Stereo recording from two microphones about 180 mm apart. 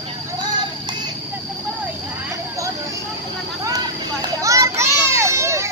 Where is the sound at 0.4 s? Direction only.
25° right (ahead or behind).